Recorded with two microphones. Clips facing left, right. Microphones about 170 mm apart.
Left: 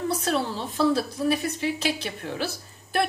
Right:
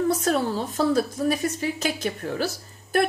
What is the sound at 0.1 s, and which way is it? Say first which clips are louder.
A woman's voice: right 3 dB; 45° right (ahead or behind).